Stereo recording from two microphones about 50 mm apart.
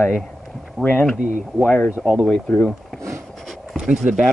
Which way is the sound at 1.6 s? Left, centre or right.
Left.